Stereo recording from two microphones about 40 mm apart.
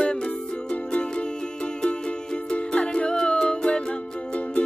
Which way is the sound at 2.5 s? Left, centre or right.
Left.